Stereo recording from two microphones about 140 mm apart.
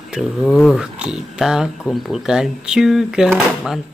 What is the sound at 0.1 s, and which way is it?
Speech, 5° right (ahead or behind).